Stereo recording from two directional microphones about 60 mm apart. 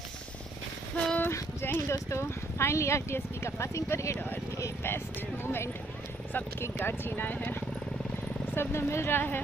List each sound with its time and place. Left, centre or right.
0.9 s a sound: left
1.3 s speech: left
4.8 s speech: left
8.5 s speech: left